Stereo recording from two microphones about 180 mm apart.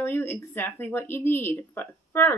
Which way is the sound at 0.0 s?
10° left (ahead or behind).